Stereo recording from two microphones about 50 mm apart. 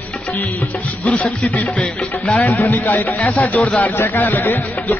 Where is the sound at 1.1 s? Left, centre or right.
Left.